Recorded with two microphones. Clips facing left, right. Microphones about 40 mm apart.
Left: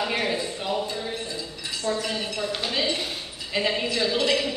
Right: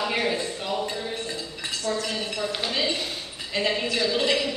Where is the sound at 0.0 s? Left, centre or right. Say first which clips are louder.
Even; centre.